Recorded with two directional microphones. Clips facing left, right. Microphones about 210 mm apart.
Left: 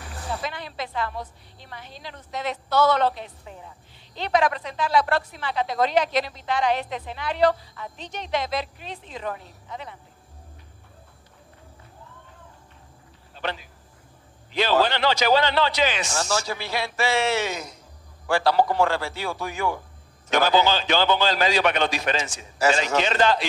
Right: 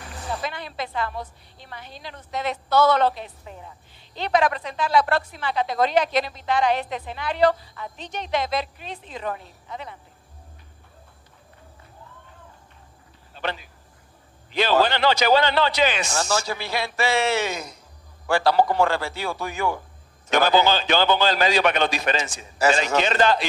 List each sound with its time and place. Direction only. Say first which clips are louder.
0.5 s music: right 1 dB; 50° right (ahead or behind)
2.0 s speech: right 2 dB; 55° right (ahead or behind)
4.2 s a woman's voice: right 1 dB; 50° right (ahead or behind)
14.5 s a woman's voice: right 1 dB; 50° right (ahead or behind)